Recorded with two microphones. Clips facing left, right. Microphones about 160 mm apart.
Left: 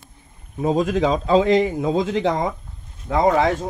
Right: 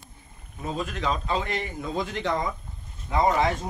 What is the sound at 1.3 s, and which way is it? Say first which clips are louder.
A man's voice: left 14 dB; 90° left.